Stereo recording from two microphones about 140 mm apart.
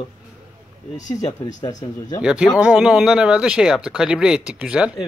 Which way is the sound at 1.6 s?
25° left (ahead or behind).